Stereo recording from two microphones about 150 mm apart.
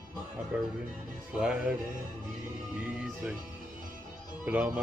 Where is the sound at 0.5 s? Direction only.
5° right (ahead or behind).